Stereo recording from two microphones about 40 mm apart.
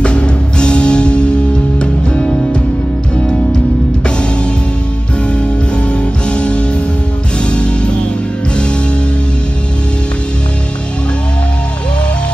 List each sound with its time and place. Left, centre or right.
0.0 s music: left
5.3 s music: left